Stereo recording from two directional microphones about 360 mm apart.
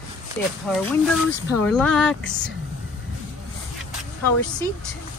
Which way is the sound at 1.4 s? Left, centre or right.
Centre.